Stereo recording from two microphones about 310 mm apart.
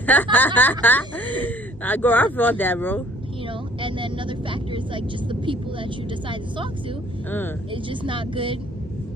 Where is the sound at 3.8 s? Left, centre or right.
Centre.